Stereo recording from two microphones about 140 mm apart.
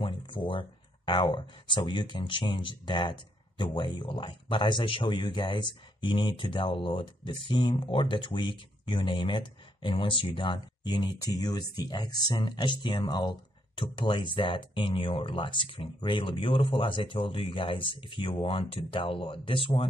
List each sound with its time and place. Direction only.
0.5 s speech: 35° left (ahead or behind)